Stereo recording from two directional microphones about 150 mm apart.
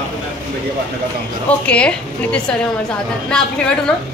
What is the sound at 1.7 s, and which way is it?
Speech, 5° left (ahead or behind).